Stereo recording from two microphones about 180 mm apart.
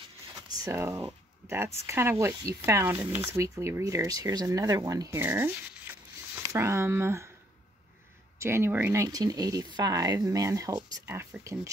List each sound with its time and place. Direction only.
0.7 s speech: 15° right (ahead or behind)
5.9 s a sound: 10° right (ahead or behind)
6.5 s speech: 15° right (ahead or behind)
8.4 s speech: 15° right (ahead or behind)